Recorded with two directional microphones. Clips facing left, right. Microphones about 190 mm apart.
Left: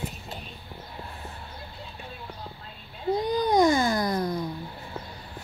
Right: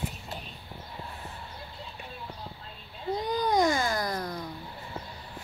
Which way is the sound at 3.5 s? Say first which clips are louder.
Left 5 dB; 20° left (ahead or behind).